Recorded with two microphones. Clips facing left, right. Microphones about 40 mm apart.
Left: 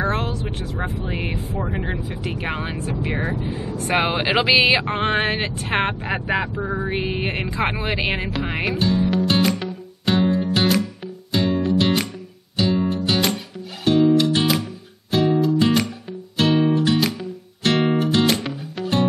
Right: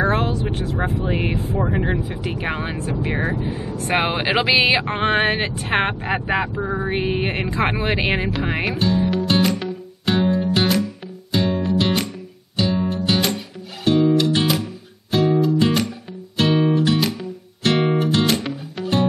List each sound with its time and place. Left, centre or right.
0.0 s speech: centre
3.2 s speech: right
3.8 s speech: centre
8.3 s music: centre